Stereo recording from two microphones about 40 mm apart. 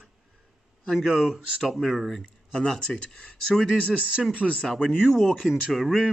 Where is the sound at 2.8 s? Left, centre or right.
Left.